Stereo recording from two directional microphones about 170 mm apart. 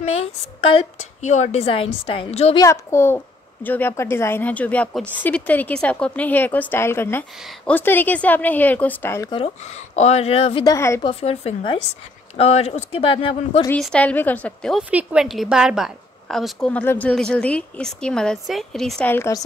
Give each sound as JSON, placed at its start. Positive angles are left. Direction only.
{"t": 0.0, "sound": "a woman's voice", "side_deg": 40}
{"t": 2.5, "sound": "speech", "side_deg": 20}
{"t": 9.9, "sound": "a woman's voice", "side_deg": 40}
{"t": 10.6, "sound": "a woman's voice", "side_deg": 20}
{"t": 11.0, "sound": "a woman's voice", "side_deg": 35}
{"t": 13.7, "sound": "a woman's voice", "side_deg": 10}